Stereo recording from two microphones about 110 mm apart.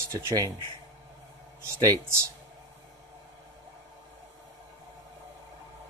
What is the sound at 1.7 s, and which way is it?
Speech, 35° right (ahead or behind).